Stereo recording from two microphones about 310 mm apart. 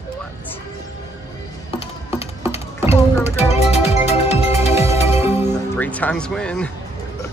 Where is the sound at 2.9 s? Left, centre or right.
Centre.